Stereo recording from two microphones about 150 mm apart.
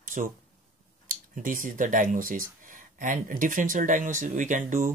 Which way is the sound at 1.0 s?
65° right (ahead or behind).